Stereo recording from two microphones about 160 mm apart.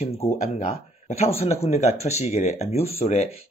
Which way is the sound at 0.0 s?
40° left (ahead or behind).